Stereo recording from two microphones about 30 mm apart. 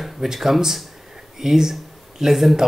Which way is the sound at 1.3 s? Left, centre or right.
Centre.